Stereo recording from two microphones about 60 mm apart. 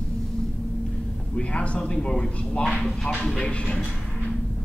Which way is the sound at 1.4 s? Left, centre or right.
Centre.